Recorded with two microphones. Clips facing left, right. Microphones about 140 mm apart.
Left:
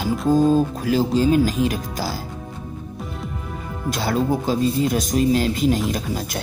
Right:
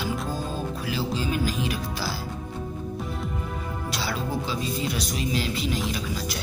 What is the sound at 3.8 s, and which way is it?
Speech, 50° left (ahead or behind).